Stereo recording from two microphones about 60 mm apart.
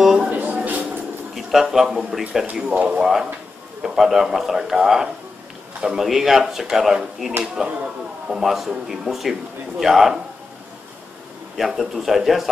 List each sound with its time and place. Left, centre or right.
0.0 s a sound: centre
0.3 s a sound: right
1.3 s speech: centre
2.7 s speech: right
3.0 s a man's voice: centre
11.5 s speech: centre